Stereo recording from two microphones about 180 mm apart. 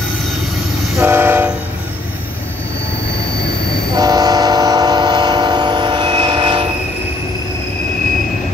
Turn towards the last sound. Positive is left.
turn(degrees=-30)  # may be behind; listen again after turning